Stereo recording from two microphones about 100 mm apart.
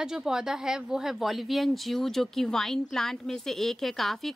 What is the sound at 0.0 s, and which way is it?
Speech, 5° right (ahead or behind).